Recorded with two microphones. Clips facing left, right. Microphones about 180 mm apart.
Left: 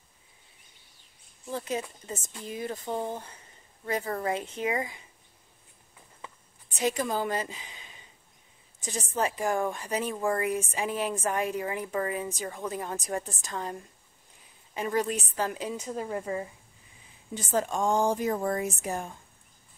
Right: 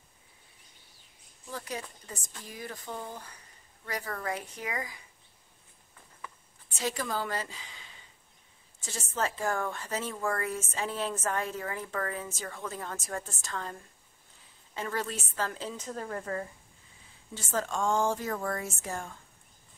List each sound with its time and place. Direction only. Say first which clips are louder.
1.5 s speech: left 6 dB; 20° left (ahead or behind)
6.2 s a sound: left 1 dB; 20° left (ahead or behind)
8.7 s a woman's voice: left 4 dB; 15° left (ahead or behind)